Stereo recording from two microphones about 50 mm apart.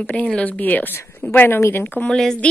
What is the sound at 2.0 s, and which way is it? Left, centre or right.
Speech, centre.